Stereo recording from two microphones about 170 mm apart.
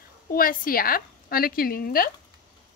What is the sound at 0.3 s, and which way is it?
A woman's voice, 55° left (ahead or behind).